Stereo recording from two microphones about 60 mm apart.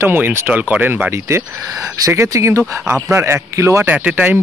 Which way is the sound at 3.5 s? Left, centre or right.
Right.